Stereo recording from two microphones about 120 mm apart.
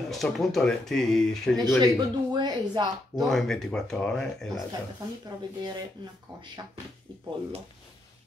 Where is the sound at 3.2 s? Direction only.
5° left (ahead or behind).